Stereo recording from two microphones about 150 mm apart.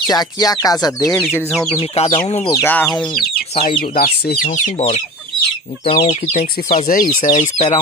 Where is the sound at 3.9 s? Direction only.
80° left.